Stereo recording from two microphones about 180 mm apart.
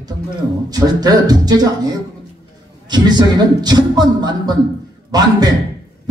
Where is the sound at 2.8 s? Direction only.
25° right (ahead or behind).